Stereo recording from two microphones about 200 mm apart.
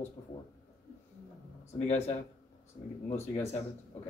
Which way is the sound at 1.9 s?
35° left (ahead or behind).